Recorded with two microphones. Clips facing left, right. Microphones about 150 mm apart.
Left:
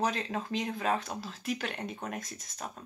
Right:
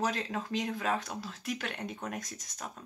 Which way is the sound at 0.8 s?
25° left (ahead or behind).